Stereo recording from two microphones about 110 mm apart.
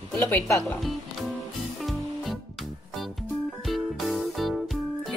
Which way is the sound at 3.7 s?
Centre (ahead or behind).